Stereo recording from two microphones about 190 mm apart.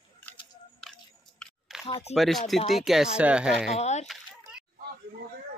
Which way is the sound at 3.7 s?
35° left (ahead or behind).